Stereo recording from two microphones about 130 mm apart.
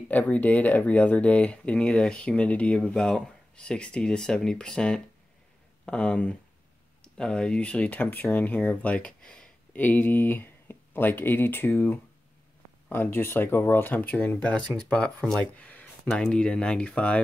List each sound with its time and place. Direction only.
0.1 s speech: 10° left (ahead or behind)